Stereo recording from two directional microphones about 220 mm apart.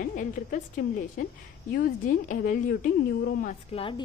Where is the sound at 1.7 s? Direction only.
40° left (ahead or behind).